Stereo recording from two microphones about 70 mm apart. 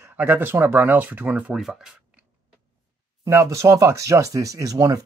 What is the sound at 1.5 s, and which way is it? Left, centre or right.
Speech, centre.